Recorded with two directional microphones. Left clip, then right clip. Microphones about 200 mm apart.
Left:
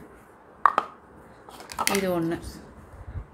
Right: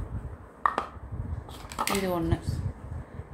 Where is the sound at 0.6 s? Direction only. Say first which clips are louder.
Left 6 dB; 30° left (ahead or behind).